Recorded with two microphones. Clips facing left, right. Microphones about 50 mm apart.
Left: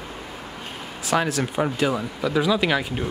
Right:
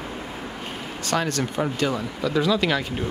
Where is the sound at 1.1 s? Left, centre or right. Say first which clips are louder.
Left 2 dB; centre.